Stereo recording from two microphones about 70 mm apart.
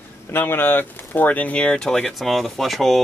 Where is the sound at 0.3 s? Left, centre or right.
Left.